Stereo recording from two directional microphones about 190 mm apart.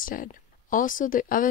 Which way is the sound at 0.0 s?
45° left (ahead or behind).